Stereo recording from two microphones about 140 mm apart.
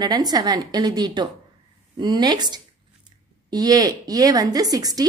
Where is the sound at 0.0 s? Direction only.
30° right (ahead or behind).